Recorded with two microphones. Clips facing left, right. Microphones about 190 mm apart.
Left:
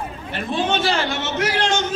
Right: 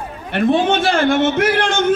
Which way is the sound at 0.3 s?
55° right (ahead or behind).